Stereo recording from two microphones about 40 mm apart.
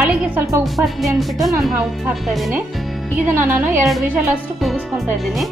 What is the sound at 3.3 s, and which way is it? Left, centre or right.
Speech, right.